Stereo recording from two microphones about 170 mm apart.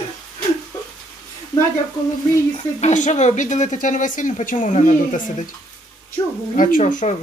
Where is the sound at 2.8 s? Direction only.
45° left (ahead or behind).